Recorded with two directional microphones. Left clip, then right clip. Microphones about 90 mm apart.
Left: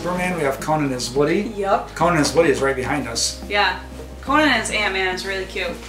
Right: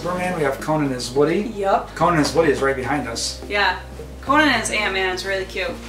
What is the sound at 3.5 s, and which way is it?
A woman's voice, 5° right (ahead or behind).